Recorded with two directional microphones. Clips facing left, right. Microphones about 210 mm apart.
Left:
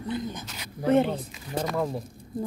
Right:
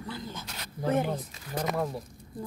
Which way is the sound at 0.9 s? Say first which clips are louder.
Left 7 dB; 25° left (ahead or behind).